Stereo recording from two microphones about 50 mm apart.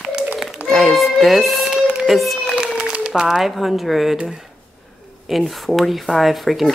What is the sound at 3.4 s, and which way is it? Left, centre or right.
Speech, centre.